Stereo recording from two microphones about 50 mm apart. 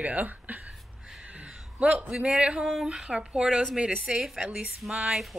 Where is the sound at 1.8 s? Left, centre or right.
Right.